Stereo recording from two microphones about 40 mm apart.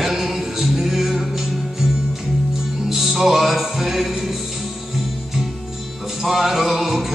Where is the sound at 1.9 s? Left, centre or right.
Centre.